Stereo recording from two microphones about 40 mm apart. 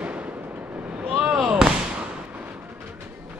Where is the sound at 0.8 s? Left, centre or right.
Right.